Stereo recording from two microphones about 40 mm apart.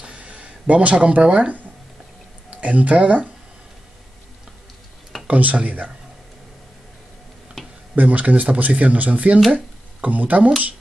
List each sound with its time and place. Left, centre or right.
0.0 s a sound: right
1.1 s speech: right
2.5 s speech: right
5.3 s speech: right
7.9 s speech: right